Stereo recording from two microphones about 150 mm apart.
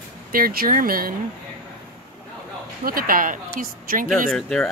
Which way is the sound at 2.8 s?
75° right (ahead or behind).